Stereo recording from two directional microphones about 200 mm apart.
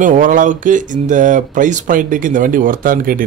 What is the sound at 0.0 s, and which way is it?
Speech, 40° right (ahead or behind).